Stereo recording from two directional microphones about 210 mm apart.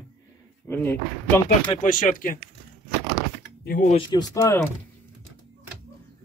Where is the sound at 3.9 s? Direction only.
20° left (ahead or behind).